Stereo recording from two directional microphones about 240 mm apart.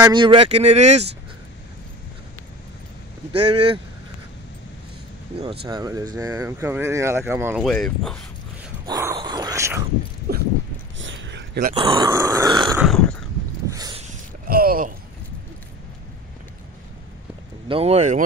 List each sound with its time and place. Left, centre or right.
0.0 s speech: centre
3.5 s speech: right
5.7 s speech: centre
7.6 s speech: centre
8.8 s speech: centre
10.3 s dog: right
11.0 s a sound: right
11.7 s speech: right
13.7 s a sound: centre
14.0 s a sound: right
17.6 s speech: right